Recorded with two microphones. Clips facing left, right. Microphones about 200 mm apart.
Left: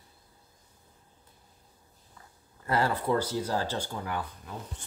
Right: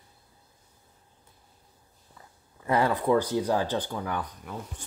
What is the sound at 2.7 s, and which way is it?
A man's voice, 15° right (ahead or behind).